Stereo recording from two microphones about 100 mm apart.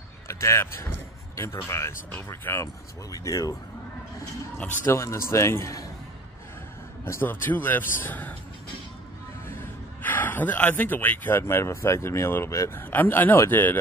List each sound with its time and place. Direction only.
0.3 s speech: 25° left (ahead or behind)
4.8 s speech: 30° left (ahead or behind)
7.1 s speech: 20° left (ahead or behind)
10.0 s speech: 20° left (ahead or behind)